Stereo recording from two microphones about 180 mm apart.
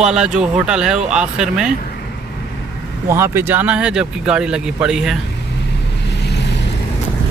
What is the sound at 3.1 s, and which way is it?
Speech, 15° right (ahead or behind).